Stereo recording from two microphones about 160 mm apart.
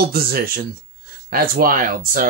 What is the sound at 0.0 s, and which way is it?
Speech, 70° right (ahead or behind).